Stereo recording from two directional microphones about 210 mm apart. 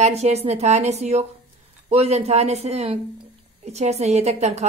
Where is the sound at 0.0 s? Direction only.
30° right (ahead or behind).